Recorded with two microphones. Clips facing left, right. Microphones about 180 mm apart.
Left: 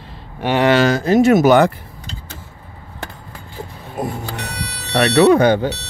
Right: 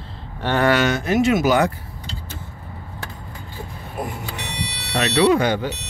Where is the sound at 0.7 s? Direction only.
30° left (ahead or behind).